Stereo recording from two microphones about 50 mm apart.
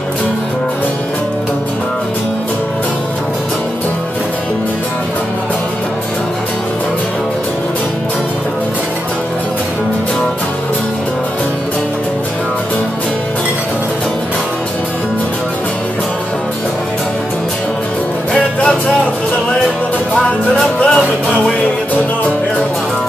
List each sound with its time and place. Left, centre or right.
18.3 s music: left
20.5 s music: centre